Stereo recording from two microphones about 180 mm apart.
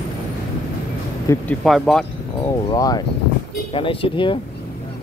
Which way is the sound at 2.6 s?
20° left (ahead or behind).